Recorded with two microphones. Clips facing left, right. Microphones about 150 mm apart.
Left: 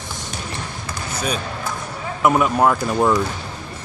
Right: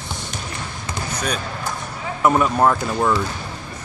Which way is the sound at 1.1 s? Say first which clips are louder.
Left 2 dB; 10° left (ahead or behind).